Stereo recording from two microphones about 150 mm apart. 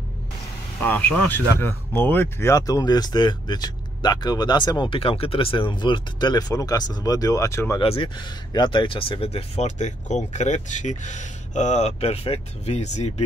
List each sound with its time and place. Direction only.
0.7 s speech: 10° left (ahead or behind)
7.8 s speech: 40° left (ahead or behind)